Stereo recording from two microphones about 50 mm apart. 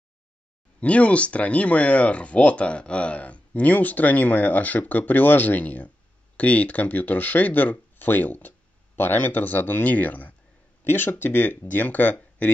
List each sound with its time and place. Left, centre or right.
0.7 s speech: left
10.8 s speech: left